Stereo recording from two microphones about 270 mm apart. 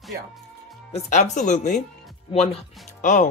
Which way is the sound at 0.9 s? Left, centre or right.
Left.